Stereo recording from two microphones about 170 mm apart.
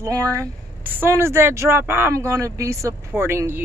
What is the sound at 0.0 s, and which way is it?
Speech, 20° right (ahead or behind).